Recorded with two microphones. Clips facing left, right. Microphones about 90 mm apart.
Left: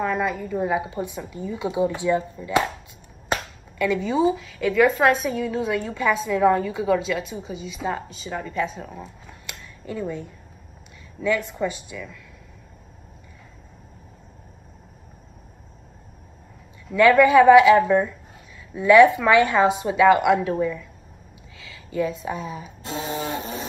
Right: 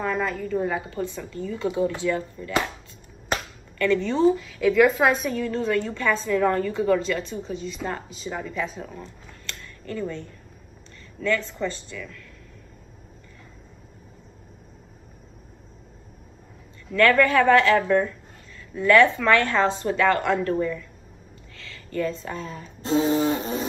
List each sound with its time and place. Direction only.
0.0 s speech: 5° left (ahead or behind)
16.9 s speech: 15° left (ahead or behind)
22.8 s a sound: 30° right (ahead or behind)